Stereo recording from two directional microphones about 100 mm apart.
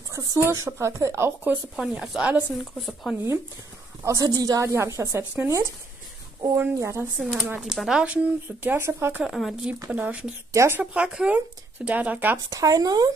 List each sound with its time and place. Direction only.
0.1 s speech: 30° right (ahead or behind)
1.8 s speech: 10° right (ahead or behind)
4.0 s a woman's voice: 35° right (ahead or behind)
7.2 s speech: 5° right (ahead or behind)
8.6 s speech: 25° right (ahead or behind)
9.2 s speech: centre (ahead or behind)
9.8 s speech: 10° right (ahead or behind)
10.5 s speech: 30° right (ahead or behind)
10.8 s speech: 10° right (ahead or behind)
12.4 s a woman's voice: 35° right (ahead or behind)